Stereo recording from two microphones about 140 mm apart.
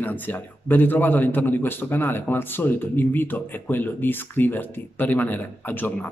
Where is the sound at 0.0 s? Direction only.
10° left (ahead or behind).